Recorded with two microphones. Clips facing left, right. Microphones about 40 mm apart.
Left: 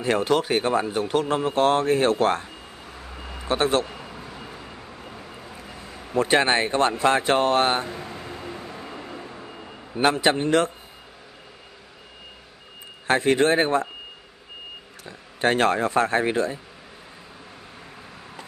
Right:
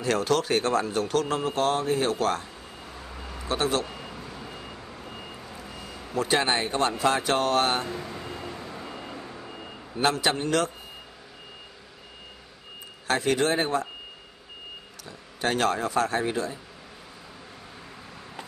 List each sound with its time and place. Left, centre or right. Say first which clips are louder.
0.0 s a man's voice: left 3 dB; left
2.8 s vehicle: even; centre
3.4 s speech: left 4 dB; left
3.8 s vehicle: left 1 dB; centre
5.6 s vehicle: left 1 dB; left
6.1 s speech: left 5 dB; left
8.0 s a sound: left 1 dB; centre
8.4 s vehicle: left 1 dB; centre
9.9 s a man's voice: left 4 dB; left
13.0 s speech: left 5 dB; left
15.0 s speech: left 6 dB; left